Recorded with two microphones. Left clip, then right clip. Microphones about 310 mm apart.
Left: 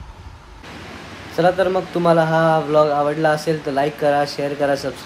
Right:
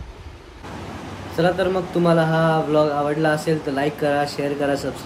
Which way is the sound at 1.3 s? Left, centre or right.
Centre.